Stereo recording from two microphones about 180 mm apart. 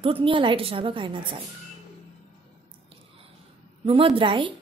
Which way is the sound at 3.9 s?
30° right (ahead or behind).